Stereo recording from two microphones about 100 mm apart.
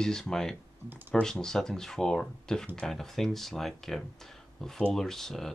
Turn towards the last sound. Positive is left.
turn(degrees=5)  # may be behind; listen again after turning